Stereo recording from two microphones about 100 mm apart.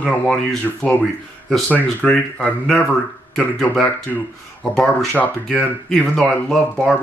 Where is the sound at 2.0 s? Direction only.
10° left (ahead or behind).